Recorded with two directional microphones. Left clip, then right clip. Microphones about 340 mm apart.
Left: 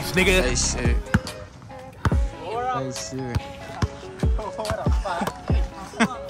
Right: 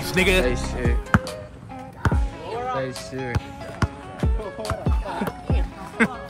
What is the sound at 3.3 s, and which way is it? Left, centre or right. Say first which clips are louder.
Music: right 1 dB; centre.